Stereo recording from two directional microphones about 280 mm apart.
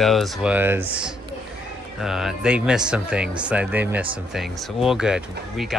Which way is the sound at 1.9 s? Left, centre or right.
Centre.